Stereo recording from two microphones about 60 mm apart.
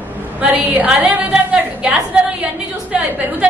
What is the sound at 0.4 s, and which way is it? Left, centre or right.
A woman's voice, right.